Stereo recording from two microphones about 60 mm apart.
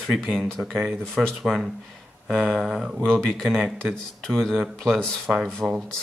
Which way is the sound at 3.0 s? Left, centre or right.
Centre.